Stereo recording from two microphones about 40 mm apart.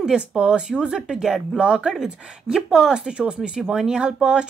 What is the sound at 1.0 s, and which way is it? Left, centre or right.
Speech, centre.